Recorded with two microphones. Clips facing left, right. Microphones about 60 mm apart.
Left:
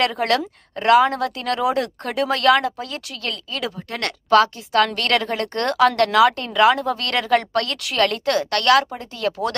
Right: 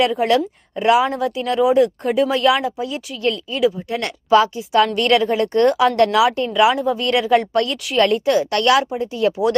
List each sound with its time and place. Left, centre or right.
0.2 s a woman's voice: centre
7.7 s speech: centre
8.5 s a woman's voice: centre